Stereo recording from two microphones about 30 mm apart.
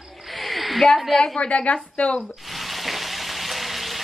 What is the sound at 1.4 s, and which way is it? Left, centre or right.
Speech, left.